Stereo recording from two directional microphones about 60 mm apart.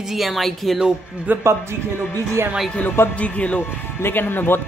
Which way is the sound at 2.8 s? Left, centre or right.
Left.